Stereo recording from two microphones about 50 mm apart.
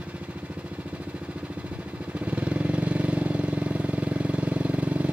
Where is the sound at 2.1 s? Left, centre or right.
Right.